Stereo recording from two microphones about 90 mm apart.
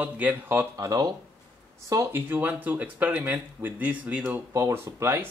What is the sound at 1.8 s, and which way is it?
Speech, 30° right (ahead or behind).